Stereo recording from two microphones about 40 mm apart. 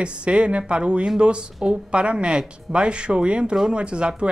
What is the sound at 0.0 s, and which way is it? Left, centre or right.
Speech, right.